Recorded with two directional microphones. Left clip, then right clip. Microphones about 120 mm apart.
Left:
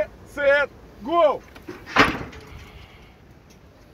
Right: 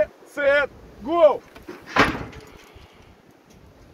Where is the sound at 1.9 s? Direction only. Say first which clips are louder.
Left 1 dB; 45° left (ahead or behind).